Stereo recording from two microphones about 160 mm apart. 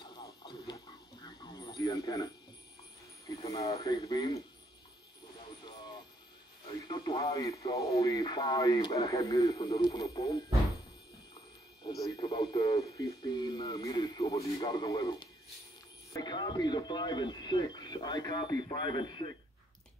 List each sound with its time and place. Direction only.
0.0 s a sound: 30° left (ahead or behind)
1.2 s radio: 25° left (ahead or behind)
3.3 s speech: 20° left (ahead or behind)
6.9 s speech: 25° left (ahead or behind)
11.8 s speech: 25° left (ahead or behind)